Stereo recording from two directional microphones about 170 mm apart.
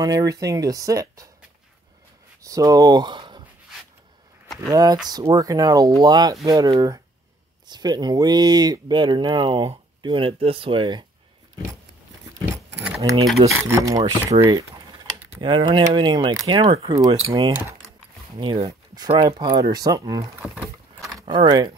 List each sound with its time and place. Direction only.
0.0 s speech: 20° right (ahead or behind)
2.4 s speech: 20° right (ahead or behind)
4.6 s speech: 25° right (ahead or behind)
12.7 s a sound: 10° right (ahead or behind)
13.4 s speech: 20° right (ahead or behind)
15.4 s speech: 30° right (ahead or behind)